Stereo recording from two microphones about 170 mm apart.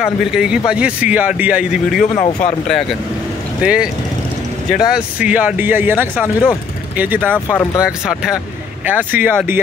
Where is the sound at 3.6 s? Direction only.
5° right (ahead or behind).